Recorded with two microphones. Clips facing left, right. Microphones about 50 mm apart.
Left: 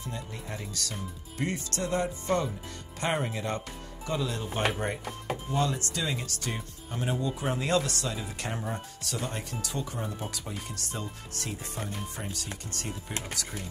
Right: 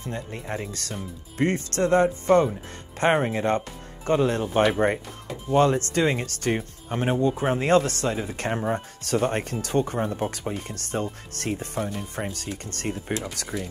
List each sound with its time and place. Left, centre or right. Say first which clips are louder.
0.0 s speech: right 6 dB; right